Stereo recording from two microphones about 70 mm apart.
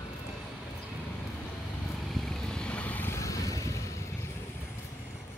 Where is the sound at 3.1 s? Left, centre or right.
Left.